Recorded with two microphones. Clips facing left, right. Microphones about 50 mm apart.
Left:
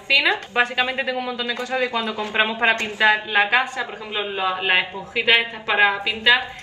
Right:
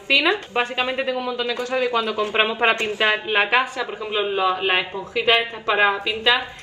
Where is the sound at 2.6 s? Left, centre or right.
Right.